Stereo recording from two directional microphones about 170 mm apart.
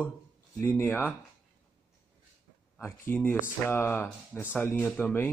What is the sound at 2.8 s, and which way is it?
Speech, 15° left (ahead or behind).